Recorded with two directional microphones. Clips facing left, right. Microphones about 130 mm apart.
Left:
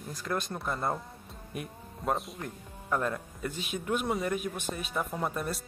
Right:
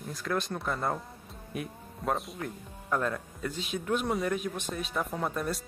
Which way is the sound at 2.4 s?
10° left (ahead or behind).